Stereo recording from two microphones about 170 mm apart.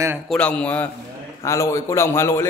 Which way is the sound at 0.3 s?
5° left (ahead or behind).